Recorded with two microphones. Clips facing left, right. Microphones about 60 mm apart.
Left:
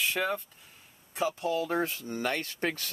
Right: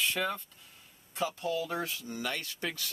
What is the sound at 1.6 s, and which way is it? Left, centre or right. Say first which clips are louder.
Speech: left 5 dB; left.